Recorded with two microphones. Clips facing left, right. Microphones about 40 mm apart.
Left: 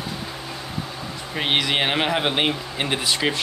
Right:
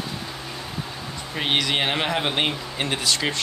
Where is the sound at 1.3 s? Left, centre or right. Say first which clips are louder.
Left 1 dB; centre.